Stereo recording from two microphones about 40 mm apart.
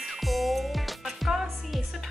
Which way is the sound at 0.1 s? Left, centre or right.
Centre.